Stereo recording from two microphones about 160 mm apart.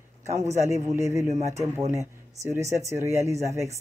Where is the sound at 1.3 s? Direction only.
40° right (ahead or behind).